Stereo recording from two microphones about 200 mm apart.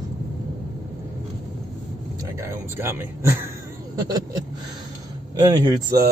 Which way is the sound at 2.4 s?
10° right (ahead or behind).